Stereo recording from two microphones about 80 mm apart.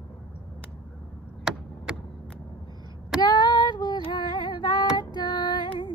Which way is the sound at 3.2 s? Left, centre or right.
Left.